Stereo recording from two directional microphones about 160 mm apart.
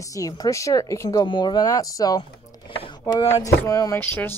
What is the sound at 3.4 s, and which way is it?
Speech, 20° left (ahead or behind).